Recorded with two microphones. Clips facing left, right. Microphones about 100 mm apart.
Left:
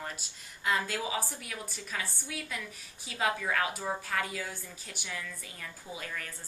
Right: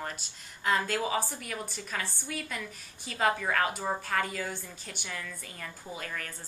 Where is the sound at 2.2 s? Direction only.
50° right (ahead or behind).